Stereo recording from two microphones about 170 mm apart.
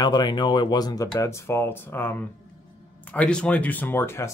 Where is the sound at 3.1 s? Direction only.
5° left (ahead or behind).